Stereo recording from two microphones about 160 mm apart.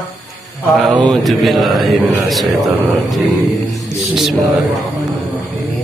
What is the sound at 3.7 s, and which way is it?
Mantra, centre (ahead or behind).